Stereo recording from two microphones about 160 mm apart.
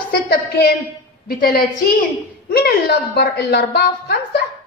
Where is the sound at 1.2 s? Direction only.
65° left (ahead or behind).